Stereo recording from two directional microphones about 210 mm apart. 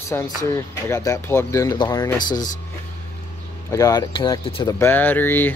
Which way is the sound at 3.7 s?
15° left (ahead or behind).